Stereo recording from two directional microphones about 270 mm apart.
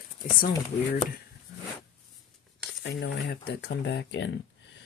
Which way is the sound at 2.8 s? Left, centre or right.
Left.